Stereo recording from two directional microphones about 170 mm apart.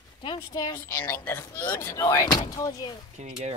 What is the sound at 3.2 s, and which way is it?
Speech, 40° right (ahead or behind).